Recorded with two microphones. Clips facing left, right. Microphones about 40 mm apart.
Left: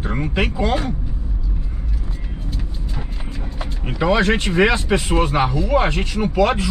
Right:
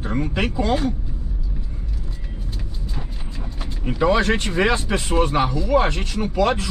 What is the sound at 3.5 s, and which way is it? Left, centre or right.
Vehicle, left.